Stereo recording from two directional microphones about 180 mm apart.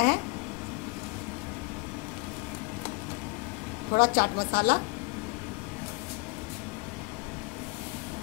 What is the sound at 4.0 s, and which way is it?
Speech, 55° left (ahead or behind).